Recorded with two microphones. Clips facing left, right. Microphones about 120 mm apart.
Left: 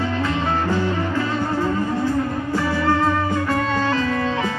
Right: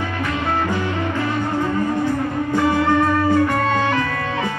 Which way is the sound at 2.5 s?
20° right (ahead or behind).